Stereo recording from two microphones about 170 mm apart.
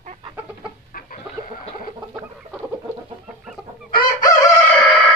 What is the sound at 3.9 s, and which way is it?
Chicken, 25° left (ahead or behind).